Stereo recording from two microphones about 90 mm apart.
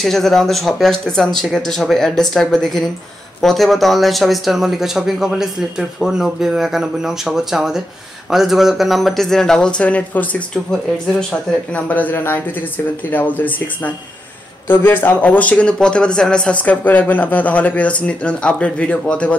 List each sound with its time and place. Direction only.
0.0 s speech: 5° left (ahead or behind)
11.7 s speech: 20° left (ahead or behind)